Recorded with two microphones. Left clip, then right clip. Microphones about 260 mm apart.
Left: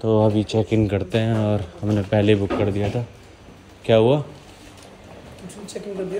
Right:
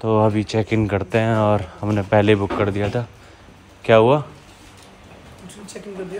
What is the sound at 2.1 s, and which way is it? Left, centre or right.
A man's voice, right.